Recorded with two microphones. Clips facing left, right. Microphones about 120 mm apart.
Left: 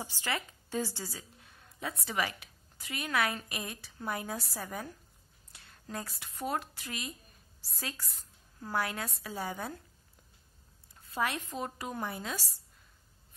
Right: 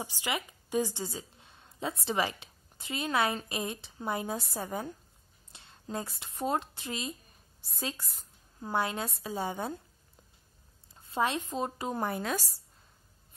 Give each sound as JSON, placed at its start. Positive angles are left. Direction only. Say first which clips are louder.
{"t": 0.0, "sound": "a woman's voice", "louder": "right 2 dB", "side_deg": -15}
{"t": 11.0, "sound": "a woman's voice", "louder": "right 3 dB", "side_deg": -25}
{"t": 12.0, "sound": "a woman's voice", "louder": "right 6 dB", "side_deg": -55}